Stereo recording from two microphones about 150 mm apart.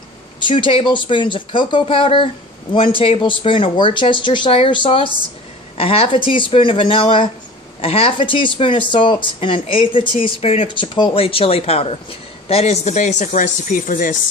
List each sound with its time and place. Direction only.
0.4 s speech: 35° left (ahead or behind); by 14.1 s 65° left (ahead or behind)